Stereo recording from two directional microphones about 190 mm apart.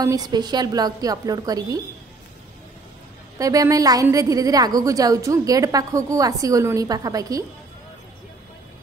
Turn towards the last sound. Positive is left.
turn(degrees=-20)  # may be behind; listen again after turning